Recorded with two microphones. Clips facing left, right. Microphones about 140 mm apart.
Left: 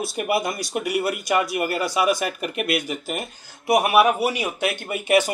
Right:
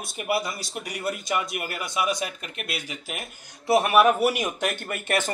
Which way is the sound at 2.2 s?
60° left (ahead or behind).